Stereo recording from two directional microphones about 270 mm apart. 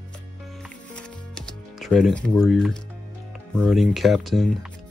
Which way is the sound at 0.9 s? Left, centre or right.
Centre.